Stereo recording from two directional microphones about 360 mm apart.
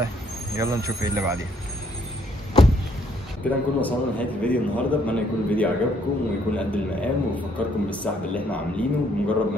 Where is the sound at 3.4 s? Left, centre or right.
Centre.